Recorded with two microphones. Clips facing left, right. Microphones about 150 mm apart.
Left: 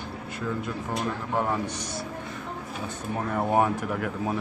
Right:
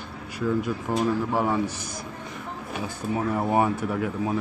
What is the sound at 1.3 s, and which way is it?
Speech, 5° right (ahead or behind).